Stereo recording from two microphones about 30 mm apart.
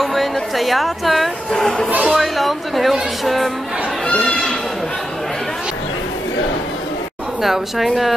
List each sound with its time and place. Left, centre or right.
0.0 s speech: centre
4.2 s a sound: left
7.4 s a woman's voice: centre